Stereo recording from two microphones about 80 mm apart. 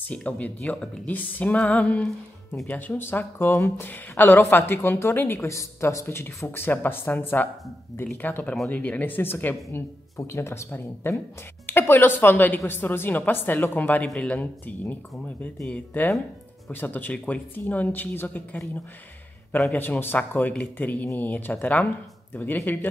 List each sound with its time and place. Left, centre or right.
0.0 s a woman's voice: centre
2.0 s speech: centre
2.7 s a woman's voice: left
19.7 s a woman's voice: left